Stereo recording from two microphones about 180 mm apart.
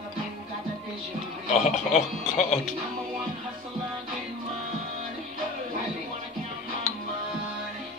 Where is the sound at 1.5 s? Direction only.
40° left (ahead or behind).